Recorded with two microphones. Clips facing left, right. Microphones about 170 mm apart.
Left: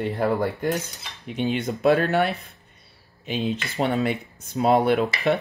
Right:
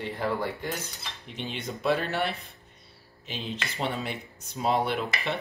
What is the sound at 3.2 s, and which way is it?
Speech, 55° left (ahead or behind).